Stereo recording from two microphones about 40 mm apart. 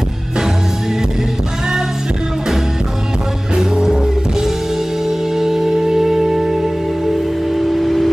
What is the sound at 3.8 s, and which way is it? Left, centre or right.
Music, centre.